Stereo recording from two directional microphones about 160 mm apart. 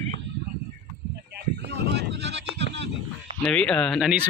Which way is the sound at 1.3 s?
90° right.